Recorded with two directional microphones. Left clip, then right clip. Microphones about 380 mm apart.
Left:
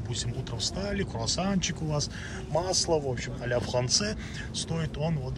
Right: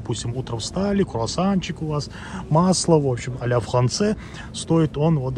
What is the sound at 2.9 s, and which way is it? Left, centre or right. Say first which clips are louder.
Speech: right 9 dB; right.